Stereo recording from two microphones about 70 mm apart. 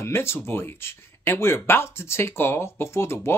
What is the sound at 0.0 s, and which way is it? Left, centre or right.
Speech, left.